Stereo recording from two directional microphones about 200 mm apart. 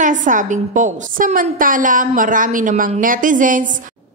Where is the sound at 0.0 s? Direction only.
40° right (ahead or behind).